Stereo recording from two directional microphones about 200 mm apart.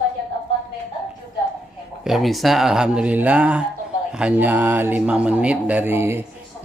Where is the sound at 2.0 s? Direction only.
Centre (ahead or behind).